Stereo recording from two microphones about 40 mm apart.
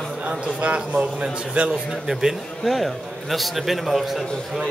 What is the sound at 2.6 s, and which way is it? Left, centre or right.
A man's voice, centre.